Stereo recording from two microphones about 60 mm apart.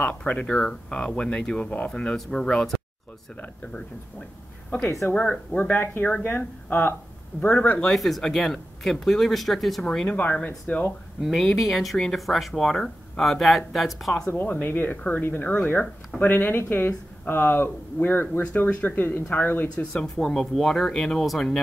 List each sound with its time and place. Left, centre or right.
0.2 s speech: left
4.7 s speech: centre
5.1 s speech: centre
5.7 s speech: left
7.9 s speech: centre
10.0 s speech: left
11.5 s speech: centre
14.3 s speech: left
18.4 s speech: left
19.8 s speech: left
20.2 s speech: centre